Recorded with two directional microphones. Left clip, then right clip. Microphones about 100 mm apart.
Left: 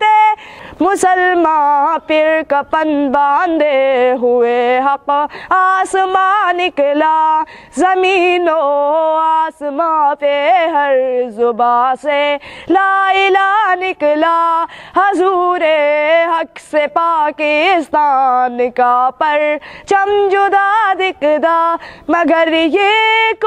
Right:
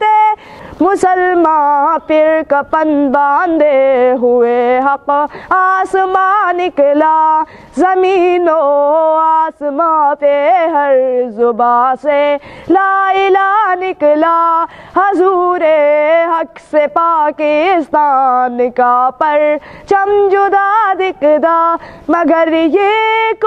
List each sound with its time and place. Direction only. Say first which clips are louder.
0.0 s speech: even; 20° left (ahead or behind)